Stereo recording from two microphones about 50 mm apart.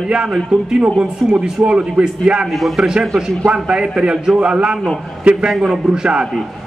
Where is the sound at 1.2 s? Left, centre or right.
Centre.